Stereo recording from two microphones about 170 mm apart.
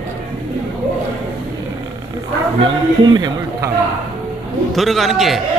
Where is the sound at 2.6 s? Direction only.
25° right (ahead or behind).